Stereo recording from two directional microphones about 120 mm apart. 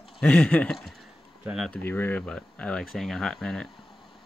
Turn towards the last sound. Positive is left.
turn(degrees=5)  # may be behind; listen again after turning